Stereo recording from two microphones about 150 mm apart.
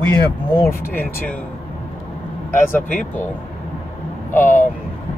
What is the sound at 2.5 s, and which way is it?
Speech, 15° left (ahead or behind).